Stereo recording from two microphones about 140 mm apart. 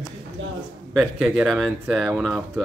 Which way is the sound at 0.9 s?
Centre (ahead or behind).